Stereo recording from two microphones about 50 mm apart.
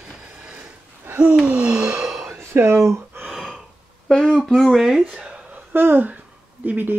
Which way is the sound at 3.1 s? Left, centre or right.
Right.